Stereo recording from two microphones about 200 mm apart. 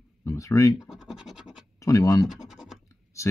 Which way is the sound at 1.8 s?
15° left (ahead or behind).